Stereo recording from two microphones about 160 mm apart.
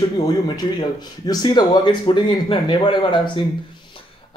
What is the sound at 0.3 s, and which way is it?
Speech, 25° left (ahead or behind).